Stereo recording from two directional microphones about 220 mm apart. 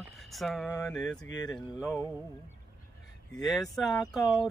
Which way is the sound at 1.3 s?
20° left (ahead or behind).